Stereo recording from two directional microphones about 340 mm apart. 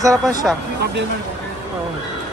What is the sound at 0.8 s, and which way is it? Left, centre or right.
Speech, right.